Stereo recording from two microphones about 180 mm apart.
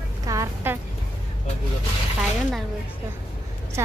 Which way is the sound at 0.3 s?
15° right (ahead or behind).